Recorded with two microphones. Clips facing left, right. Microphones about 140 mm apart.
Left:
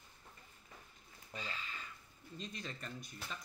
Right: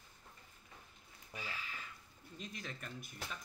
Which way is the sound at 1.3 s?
10° right (ahead or behind).